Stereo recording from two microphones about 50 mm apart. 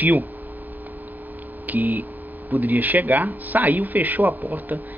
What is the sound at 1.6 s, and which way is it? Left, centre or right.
Speech, right.